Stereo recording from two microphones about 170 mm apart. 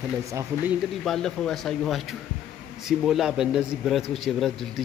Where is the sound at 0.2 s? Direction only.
20° right (ahead or behind).